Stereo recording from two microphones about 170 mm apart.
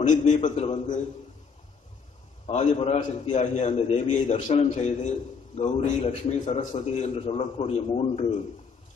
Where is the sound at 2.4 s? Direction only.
40° left (ahead or behind).